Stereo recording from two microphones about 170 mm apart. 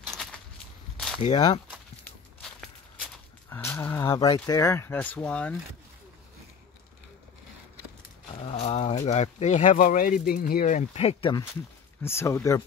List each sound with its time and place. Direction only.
0.0 s a sound: centre (ahead or behind)
1.3 s speech: 25° left (ahead or behind)
3.4 s a sound: 15° left (ahead or behind)
4.0 s speech: 25° left (ahead or behind); by 5.6 s 5° left (ahead or behind)
8.5 s speech: 35° left (ahead or behind)
12.0 s speech: 15° left (ahead or behind)